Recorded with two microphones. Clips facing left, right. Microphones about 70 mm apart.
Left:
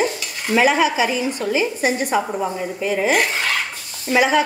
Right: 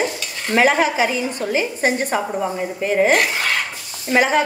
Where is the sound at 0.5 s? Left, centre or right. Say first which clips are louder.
Even; right.